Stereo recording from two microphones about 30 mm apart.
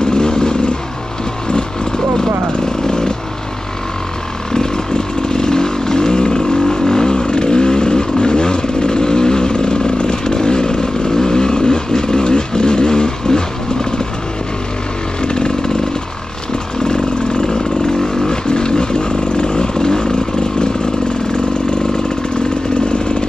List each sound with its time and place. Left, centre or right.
0.0 s a sound: left
1.5 s chainsaw: left
4.5 s motorcycle: left
6.8 s vehicle: centre
15.2 s chainsaw: left
16.8 s vehicle: left
18.5 s a sound: left